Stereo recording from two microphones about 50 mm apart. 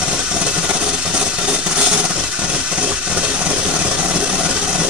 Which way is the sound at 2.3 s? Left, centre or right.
Centre.